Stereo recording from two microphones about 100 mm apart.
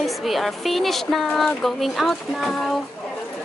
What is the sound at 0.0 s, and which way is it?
A woman's voice, centre (ahead or behind).